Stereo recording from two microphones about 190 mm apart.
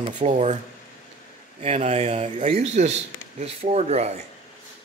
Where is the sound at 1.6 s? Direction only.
35° right (ahead or behind).